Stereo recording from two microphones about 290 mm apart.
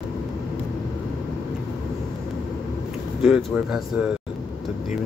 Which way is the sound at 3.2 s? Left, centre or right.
Centre.